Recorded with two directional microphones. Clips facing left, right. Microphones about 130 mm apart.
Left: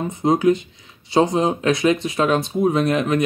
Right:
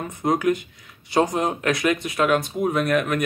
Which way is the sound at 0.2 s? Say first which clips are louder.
Left 4 dB; 25° left (ahead or behind).